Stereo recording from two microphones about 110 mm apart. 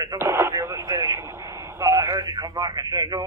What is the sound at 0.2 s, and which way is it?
Radio, 25° right (ahead or behind).